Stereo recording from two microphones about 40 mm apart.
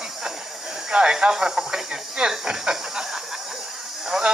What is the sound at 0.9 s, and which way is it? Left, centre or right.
Speech, right.